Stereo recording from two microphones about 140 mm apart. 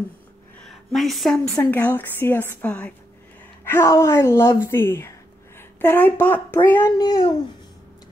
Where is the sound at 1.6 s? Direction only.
15° left (ahead or behind).